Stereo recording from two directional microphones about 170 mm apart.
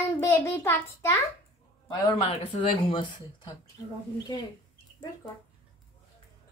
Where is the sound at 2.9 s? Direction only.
30° left (ahead or behind).